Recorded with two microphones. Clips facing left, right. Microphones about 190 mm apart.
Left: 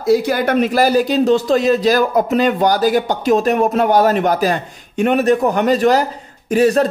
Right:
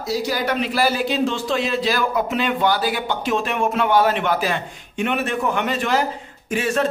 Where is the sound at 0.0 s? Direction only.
55° left (ahead or behind).